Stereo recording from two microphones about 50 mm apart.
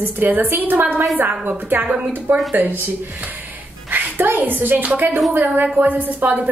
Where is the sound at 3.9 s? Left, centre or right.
Right.